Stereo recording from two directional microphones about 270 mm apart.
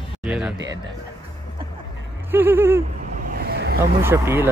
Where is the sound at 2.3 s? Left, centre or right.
Centre.